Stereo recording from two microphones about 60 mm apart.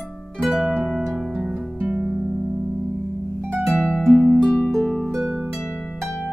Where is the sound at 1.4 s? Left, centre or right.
Right.